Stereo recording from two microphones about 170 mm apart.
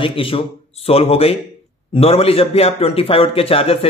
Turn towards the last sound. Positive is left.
turn(degrees=35)  # may be behind; listen again after turning